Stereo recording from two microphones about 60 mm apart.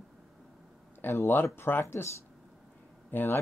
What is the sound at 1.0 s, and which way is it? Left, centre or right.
Speech, left.